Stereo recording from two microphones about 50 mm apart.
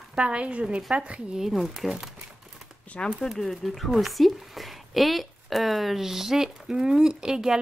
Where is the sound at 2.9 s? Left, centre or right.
Left.